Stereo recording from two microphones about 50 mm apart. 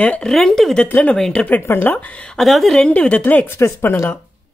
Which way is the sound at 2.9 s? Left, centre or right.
Left.